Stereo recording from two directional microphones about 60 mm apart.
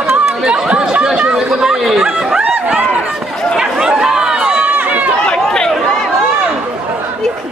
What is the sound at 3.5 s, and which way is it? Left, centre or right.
Speech, centre.